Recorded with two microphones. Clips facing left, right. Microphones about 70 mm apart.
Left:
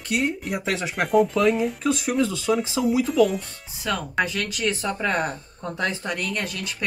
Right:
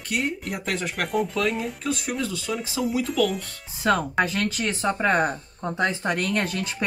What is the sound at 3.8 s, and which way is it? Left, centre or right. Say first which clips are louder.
Speech: right 3 dB; right.